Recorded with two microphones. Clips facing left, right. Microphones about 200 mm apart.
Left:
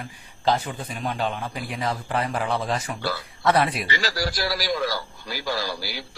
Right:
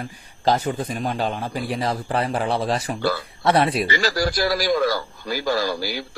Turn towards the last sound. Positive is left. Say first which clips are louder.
# right 6 dB
turn(degrees=-50)  # may be behind; listen again after turning